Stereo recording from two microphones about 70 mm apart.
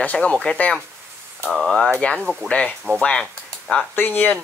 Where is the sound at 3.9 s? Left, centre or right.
Left.